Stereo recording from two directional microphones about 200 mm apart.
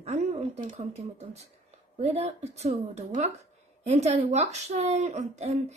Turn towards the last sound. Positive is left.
turn(degrees=-35)  # may be behind; listen again after turning